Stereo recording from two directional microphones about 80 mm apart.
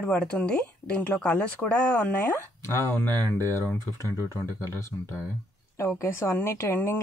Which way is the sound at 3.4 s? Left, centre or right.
Left.